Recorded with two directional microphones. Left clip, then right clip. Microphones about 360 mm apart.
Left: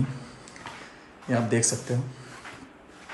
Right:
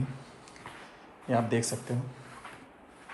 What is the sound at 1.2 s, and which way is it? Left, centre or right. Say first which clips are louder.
Speech: left 3 dB; centre.